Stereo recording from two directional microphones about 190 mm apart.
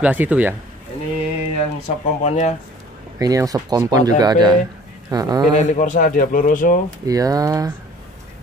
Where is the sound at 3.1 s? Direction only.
20° right (ahead or behind).